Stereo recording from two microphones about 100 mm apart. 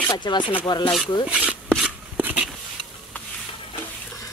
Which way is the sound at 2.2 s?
15° right (ahead or behind).